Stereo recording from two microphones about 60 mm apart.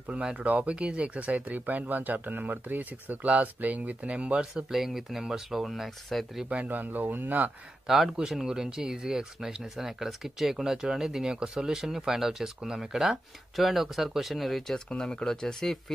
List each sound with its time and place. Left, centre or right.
0.1 s speech: centre
4.6 s speech: centre
6.5 s speech: right
7.8 s speech: centre
14.9 s speech: centre